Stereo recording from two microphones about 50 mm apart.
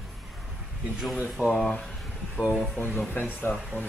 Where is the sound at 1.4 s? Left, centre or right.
Left.